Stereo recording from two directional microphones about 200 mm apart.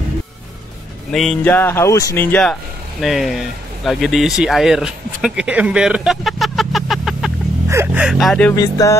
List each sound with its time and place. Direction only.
1.1 s speech: centre (ahead or behind)
3.0 s speech: centre (ahead or behind)
7.6 s speech: 10° right (ahead or behind); by 8.5 s 5° left (ahead or behind)
8.5 s speech: 15° left (ahead or behind)